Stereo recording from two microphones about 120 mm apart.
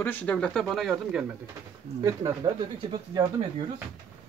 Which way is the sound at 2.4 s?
45° right (ahead or behind).